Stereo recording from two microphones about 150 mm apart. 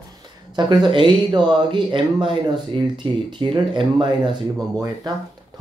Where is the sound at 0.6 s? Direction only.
30° right (ahead or behind).